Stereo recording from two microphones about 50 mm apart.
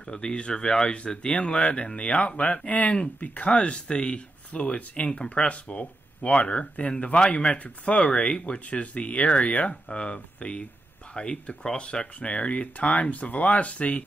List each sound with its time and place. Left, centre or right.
0.0 s speech: centre
5.2 s speech: centre